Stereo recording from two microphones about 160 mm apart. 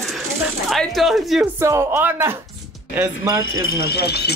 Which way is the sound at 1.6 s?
15° right (ahead or behind).